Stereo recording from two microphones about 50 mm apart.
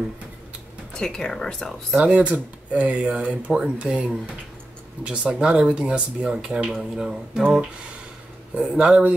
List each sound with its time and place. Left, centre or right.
0.9 s speech: centre
2.0 s speech: right
8.5 s speech: centre